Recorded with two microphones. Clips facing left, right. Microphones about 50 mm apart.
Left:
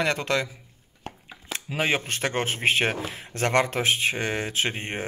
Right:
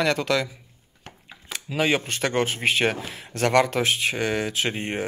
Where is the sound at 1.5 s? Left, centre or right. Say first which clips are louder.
Right 2 dB; left.